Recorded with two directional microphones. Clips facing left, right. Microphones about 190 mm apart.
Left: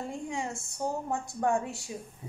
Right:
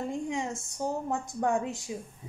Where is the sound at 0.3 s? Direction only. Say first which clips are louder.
Right 2 dB; 20° right (ahead or behind).